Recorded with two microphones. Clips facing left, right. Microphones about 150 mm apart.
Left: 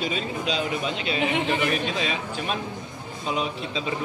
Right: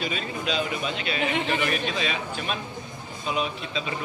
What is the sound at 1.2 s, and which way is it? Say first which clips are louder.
Speech: left 2 dB; 15° left (ahead or behind).